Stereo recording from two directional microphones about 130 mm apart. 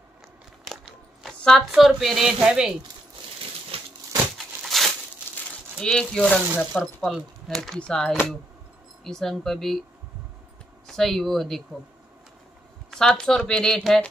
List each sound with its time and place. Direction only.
0.7 s a sound: centre (ahead or behind)
1.7 s speech: centre (ahead or behind)
3.7 s crumpling: 45° right (ahead or behind)
4.6 s crumpling: centre (ahead or behind)
5.8 s speech: 5° left (ahead or behind)
10.9 s speech: centre (ahead or behind)
12.9 s speech: 5° left (ahead or behind)